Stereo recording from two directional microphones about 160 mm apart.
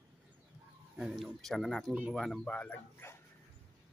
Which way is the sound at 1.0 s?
5° right (ahead or behind).